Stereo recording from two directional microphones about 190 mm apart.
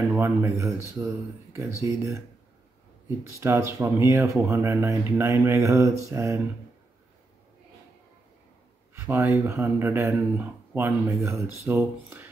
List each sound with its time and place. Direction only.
0.1 s speech: 15° right (ahead or behind)
3.3 s speech: 15° right (ahead or behind)
9.0 s speech: 10° right (ahead or behind)